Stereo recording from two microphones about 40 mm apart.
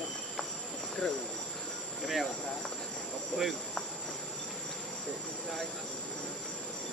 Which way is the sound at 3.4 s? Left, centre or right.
Centre.